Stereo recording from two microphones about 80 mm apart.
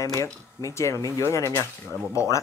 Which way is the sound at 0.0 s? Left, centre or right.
Left.